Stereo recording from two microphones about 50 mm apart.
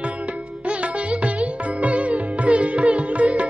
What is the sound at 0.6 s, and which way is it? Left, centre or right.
Music, right.